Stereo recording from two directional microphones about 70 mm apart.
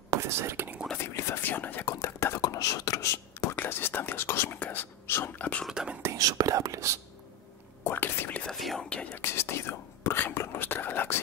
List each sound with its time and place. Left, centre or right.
0.1 s speech: right
0.9 s speech: left
1.4 s speech: left
2.0 s speech: left
2.4 s speech: left
3.5 s speech: left
5.4 s speech: centre
5.7 s speech: centre
6.1 s speech: right
7.8 s speech: left
8.5 s speech: centre
8.8 s speech: centre
9.2 s speech: left